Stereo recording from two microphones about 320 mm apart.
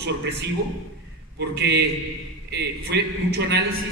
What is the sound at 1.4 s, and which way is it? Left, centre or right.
A woman's voice, right.